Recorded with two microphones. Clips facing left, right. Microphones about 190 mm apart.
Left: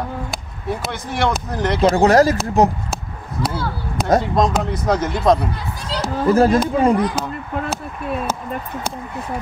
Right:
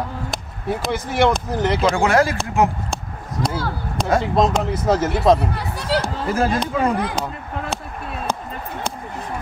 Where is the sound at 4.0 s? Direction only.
5° left (ahead or behind).